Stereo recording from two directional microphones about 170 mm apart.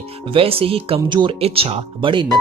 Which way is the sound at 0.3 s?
35° right (ahead or behind).